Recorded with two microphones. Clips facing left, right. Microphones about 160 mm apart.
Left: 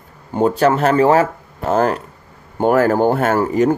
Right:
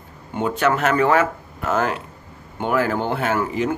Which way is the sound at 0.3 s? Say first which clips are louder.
Left 6 dB; 35° left (ahead or behind).